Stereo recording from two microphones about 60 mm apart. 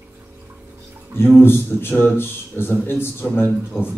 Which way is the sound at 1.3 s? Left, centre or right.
Left.